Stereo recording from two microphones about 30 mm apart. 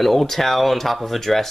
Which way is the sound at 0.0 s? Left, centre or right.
Centre.